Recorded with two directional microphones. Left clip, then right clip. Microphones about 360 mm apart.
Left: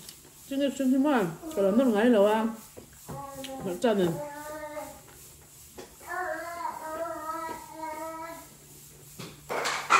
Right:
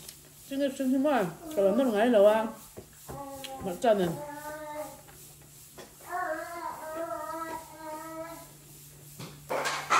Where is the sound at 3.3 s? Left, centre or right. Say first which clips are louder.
Left 2 dB; centre.